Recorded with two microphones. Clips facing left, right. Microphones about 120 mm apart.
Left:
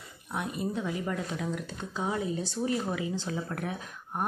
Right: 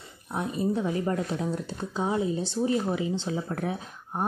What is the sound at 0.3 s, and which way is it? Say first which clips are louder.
Speech: right 5 dB; 35° right (ahead or behind).